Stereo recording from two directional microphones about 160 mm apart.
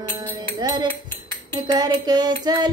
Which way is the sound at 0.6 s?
25° right (ahead or behind).